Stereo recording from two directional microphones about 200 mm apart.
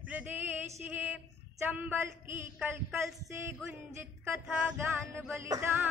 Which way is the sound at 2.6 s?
10° right (ahead or behind).